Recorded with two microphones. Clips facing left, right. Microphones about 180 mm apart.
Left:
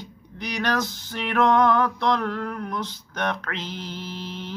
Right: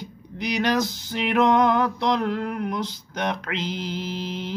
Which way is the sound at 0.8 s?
40° right (ahead or behind).